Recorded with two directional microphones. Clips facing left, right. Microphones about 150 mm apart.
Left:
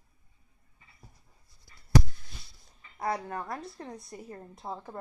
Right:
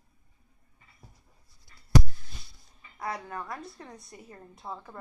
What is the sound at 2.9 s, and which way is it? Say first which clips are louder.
A woman's voice: left 3 dB; 30° left (ahead or behind).